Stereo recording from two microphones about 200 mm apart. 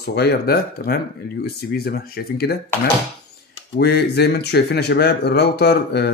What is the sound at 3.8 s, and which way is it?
Speech, 55° left (ahead or behind).